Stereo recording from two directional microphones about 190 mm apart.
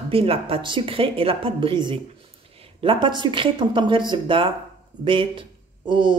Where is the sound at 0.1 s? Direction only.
30° right (ahead or behind).